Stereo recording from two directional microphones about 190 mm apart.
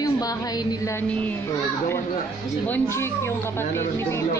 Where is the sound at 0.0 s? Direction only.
20° left (ahead or behind).